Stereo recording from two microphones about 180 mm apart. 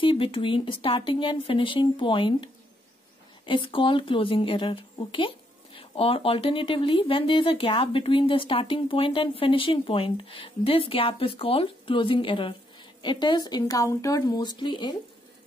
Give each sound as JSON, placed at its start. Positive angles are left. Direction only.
{"t": 0.0, "sound": "speech", "side_deg": 30}